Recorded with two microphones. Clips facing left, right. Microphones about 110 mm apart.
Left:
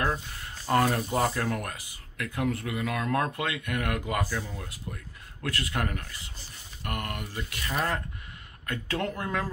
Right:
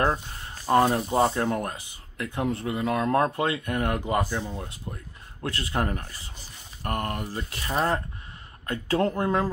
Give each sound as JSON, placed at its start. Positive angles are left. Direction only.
{"t": 0.0, "sound": "speech", "side_deg": -30}